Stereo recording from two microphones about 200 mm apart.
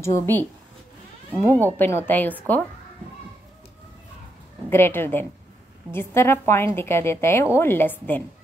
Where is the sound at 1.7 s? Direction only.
10° left (ahead or behind).